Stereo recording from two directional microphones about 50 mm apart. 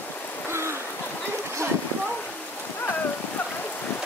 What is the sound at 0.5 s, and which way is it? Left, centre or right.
Rain, right.